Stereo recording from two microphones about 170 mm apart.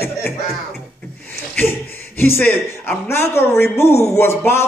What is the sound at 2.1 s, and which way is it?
A man's voice, 15° left (ahead or behind).